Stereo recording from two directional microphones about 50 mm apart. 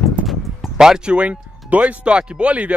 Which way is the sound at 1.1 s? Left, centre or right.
Right.